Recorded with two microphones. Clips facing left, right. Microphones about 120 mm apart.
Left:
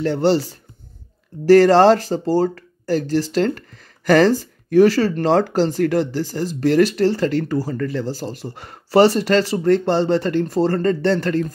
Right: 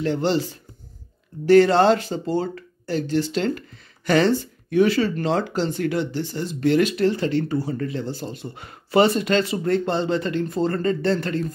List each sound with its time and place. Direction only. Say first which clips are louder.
0.0 s speech: left 5 dB; 35° left (ahead or behind)
1.4 s speech: left 4 dB; 40° left (ahead or behind)